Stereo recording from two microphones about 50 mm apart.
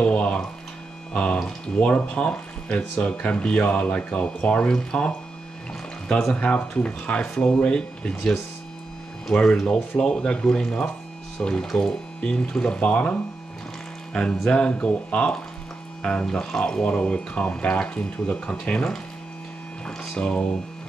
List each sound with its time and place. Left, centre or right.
0.0 s a sound: left
1.1 s speech: left
6.0 s speech: centre
6.3 s speech: left
9.3 s speech: centre
20.2 s speech: centre